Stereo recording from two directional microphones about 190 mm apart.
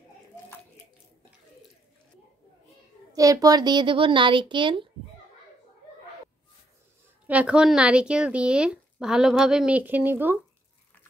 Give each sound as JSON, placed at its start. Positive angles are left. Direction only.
{"t": 3.1, "sound": "a child's voice", "side_deg": -20}
{"t": 7.2, "sound": "speech", "side_deg": -5}